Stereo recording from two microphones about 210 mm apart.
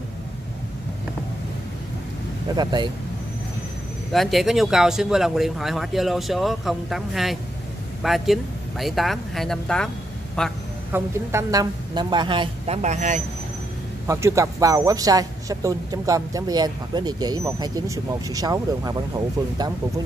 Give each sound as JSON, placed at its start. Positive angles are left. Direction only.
{"t": 2.5, "sound": "a woman's voice", "side_deg": -20}
{"t": 4.1, "sound": "speech", "side_deg": 0}
{"t": 10.9, "sound": "a woman's voice", "side_deg": -15}
{"t": 14.0, "sound": "a woman's voice", "side_deg": -15}